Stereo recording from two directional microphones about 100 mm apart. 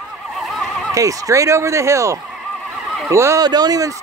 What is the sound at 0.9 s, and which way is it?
Speech, 35° right (ahead or behind).